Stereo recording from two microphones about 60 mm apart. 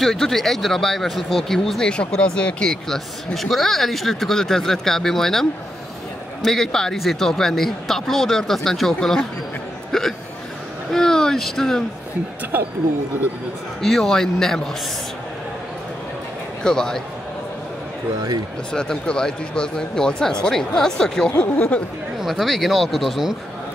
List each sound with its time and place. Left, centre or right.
0.0 s speech: centre
1.9 s speech: centre
2.7 s speech: centre
9.9 s hiccup: centre
10.9 s speech: centre
13.7 s speech: centre
16.6 s speech: centre
18.7 s speech: centre
21.4 s speech: left
22.2 s speech: centre